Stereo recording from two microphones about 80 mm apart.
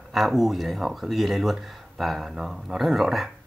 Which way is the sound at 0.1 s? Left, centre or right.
Centre.